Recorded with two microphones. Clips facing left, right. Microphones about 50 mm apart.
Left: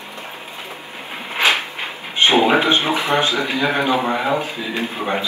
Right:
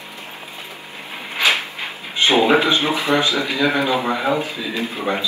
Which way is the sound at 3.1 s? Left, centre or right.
Left.